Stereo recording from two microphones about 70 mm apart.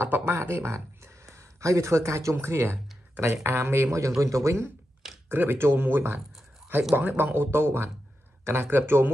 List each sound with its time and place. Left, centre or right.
0.0 s speech: right
5.3 s speech: right